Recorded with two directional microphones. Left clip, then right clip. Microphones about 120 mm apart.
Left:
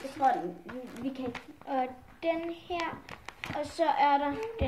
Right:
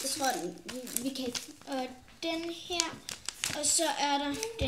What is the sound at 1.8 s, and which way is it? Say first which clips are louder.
Speech: left 5 dB; 50° left (ahead or behind).